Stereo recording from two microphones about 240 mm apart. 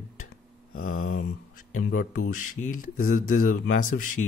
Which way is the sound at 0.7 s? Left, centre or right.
Left.